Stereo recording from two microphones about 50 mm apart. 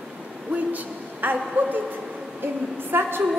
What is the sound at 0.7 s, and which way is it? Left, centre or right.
A woman's voice, right.